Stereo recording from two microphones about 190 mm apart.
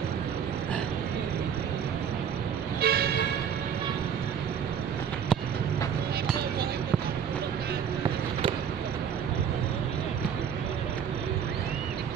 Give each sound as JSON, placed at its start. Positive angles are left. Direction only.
{"t": 2.8, "sound": "vehicle", "side_deg": -55}